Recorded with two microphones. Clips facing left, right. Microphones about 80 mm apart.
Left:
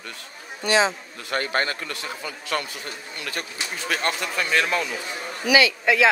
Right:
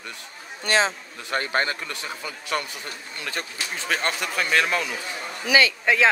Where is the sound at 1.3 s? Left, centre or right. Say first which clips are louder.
Even; right.